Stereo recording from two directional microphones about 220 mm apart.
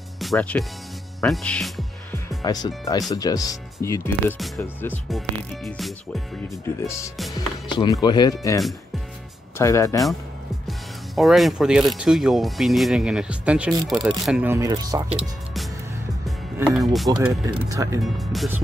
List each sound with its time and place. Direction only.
0.2 s speech: 5° left (ahead or behind)
2.1 s speech: 15° left (ahead or behind); by 6.2 s centre (ahead or behind)
6.8 s speech: 15° left (ahead or behind)
9.6 s speech: 15° left (ahead or behind)
10.7 s music: centre (ahead or behind)
11.9 s speech: centre (ahead or behind)
15.0 s speech: 5° right (ahead or behind)
17.2 s speech: 10° right (ahead or behind)
18.0 s speech: centre (ahead or behind)